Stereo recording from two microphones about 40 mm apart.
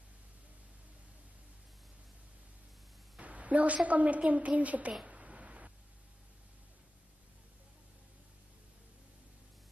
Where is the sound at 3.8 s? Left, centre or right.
Right.